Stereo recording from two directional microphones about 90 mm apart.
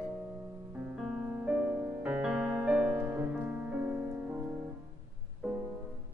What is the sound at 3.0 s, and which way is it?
Music, 20° right (ahead or behind).